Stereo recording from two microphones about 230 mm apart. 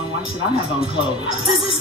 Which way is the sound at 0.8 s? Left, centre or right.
Left.